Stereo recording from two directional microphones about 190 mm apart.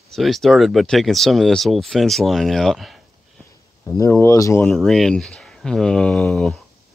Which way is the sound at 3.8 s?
10° left (ahead or behind).